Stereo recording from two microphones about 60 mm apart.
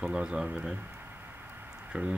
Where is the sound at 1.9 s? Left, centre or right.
Right.